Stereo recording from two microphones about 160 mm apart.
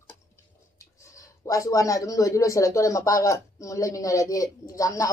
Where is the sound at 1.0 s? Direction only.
20° left (ahead or behind).